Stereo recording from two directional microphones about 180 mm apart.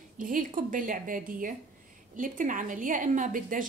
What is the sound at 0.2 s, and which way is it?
A woman's voice, 50° right (ahead or behind).